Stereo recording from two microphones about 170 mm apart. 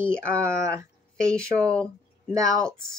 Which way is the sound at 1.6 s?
20° right (ahead or behind).